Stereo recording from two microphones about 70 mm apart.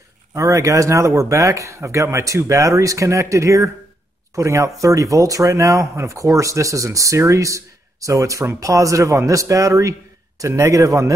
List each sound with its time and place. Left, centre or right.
0.3 s speech: right